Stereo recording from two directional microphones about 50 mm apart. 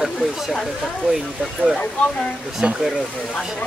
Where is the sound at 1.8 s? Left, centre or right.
Left.